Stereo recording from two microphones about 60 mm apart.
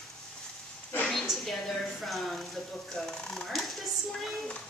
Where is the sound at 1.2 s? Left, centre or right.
Centre.